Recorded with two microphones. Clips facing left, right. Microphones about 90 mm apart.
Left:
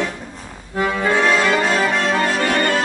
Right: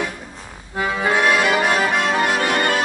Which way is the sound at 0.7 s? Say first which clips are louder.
Left 2 dB; 10° right (ahead or behind).